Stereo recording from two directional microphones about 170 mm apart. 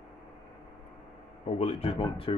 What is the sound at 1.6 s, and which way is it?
Speech, 35° left (ahead or behind).